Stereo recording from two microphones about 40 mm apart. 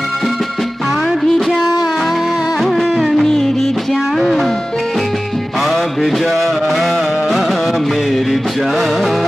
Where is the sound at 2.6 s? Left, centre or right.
Centre.